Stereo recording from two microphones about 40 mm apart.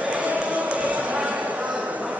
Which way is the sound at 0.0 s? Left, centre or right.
Right.